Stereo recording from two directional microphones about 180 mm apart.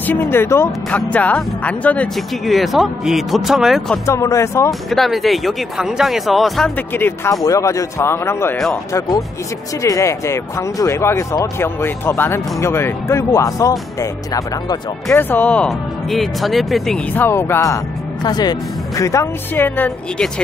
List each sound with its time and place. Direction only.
0.0 s speech: 10° left (ahead or behind)
4.0 s speech: 15° left (ahead or behind)
4.6 s speech: centre (ahead or behind)
9.8 s speech: 15° left (ahead or behind)
15.0 s speech: 10° left (ahead or behind)